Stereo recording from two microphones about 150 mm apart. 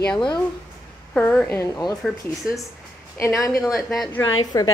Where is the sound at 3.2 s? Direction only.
20° left (ahead or behind).